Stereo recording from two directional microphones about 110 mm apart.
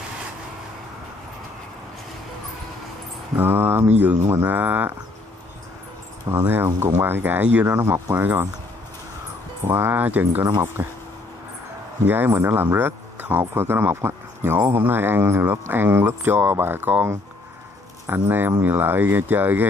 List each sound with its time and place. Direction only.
3.3 s speech: 20° right (ahead or behind)
6.4 s speech: 20° right (ahead or behind)
9.6 s speech: 20° right (ahead or behind)
12.1 s speech: 20° right (ahead or behind)